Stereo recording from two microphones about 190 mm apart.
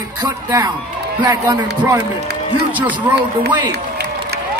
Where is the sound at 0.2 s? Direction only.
15° right (ahead or behind).